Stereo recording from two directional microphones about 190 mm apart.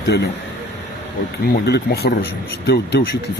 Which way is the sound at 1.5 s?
55° left (ahead or behind).